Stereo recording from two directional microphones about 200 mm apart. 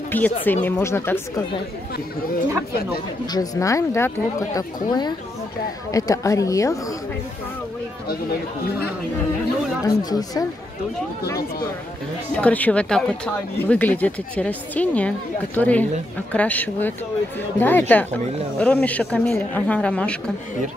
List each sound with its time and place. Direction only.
0.1 s speech: 10° left (ahead or behind)
3.3 s speech: 20° left (ahead or behind)
9.8 s speech: 20° left (ahead or behind)
12.4 s speech: 10° left (ahead or behind)